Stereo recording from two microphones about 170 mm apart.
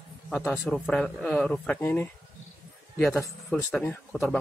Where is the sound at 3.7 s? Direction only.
5° left (ahead or behind).